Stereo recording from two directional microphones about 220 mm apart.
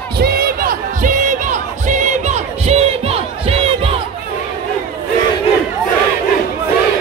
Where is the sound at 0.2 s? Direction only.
45° right (ahead or behind); by 3.9 s 25° right (ahead or behind).